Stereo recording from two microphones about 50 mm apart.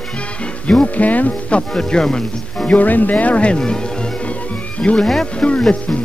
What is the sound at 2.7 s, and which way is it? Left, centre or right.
Speech, left.